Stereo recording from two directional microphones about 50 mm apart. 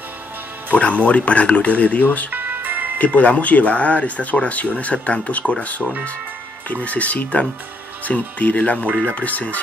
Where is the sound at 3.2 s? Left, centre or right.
Left.